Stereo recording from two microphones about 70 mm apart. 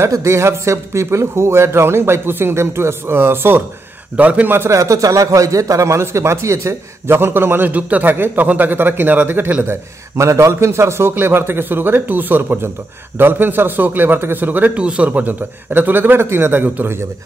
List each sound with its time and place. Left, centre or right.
0.0 s speech: right
4.2 s a man's voice: right
4.6 s speech: right
10.1 s a man's voice: right